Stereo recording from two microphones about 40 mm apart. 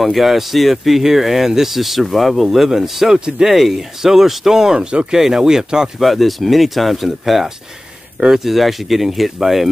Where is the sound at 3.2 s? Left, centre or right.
Right.